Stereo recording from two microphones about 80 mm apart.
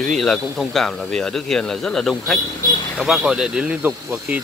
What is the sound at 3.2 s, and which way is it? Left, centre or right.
Speech, centre.